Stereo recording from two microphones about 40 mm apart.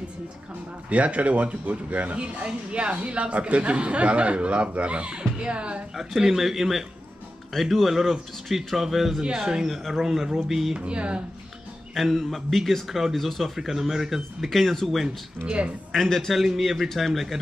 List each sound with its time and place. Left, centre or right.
0.8 s speech: right
5.9 s speech: centre
7.5 s speech: centre
7.9 s speech: centre
9.2 s speech: centre
10.8 s speech: right
11.9 s speech: centre
14.5 s speech: centre
15.4 s speech: right
15.9 s speech: centre